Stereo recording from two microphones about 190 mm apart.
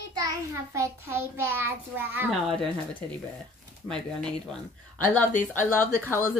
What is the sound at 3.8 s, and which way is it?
Speech, 15° right (ahead or behind).